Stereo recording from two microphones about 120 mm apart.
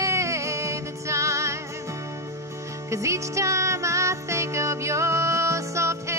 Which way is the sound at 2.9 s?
25° right (ahead or behind).